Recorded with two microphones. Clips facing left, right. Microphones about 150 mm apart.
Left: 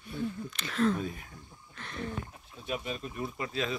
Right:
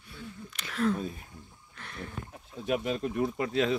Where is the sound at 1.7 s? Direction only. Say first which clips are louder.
Left 3 dB; 10° right (ahead or behind).